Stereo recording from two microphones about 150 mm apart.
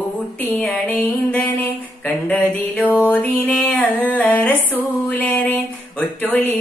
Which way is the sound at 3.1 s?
10° left (ahead or behind).